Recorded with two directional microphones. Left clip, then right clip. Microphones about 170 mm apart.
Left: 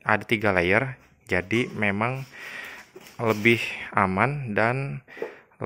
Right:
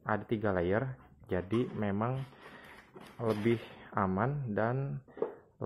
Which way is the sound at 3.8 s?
45° left (ahead or behind).